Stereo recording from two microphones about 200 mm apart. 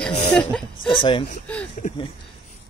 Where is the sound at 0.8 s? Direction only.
25° left (ahead or behind).